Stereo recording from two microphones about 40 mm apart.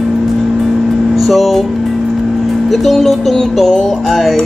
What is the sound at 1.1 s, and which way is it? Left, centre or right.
Speech, centre.